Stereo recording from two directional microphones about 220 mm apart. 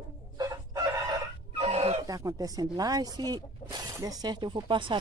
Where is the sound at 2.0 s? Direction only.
15° right (ahead or behind).